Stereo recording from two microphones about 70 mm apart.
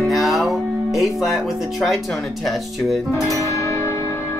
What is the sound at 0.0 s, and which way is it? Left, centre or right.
Music, centre.